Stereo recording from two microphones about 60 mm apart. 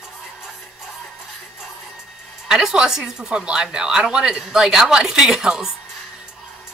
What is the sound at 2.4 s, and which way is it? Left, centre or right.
A woman's voice, centre.